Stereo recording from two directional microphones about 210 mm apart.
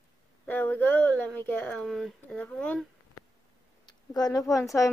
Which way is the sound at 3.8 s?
20° left (ahead or behind).